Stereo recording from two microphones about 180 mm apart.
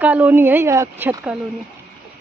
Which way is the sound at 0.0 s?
10° right (ahead or behind).